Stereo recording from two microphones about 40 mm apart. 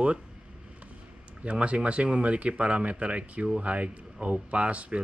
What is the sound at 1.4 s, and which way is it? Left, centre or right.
Speech, right.